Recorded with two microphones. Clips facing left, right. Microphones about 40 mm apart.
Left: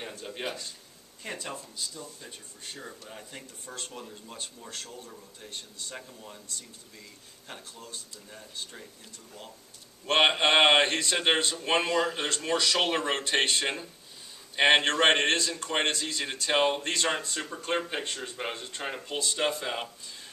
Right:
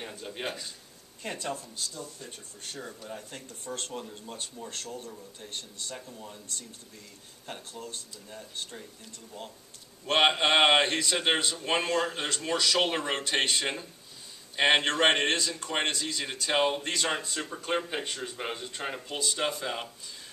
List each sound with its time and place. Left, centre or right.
0.1 s speech: centre
1.2 s speech: left
4.9 s a man's voice: right
10.0 s a man's voice: centre